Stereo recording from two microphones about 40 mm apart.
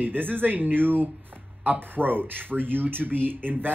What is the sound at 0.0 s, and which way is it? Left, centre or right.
Speech, right.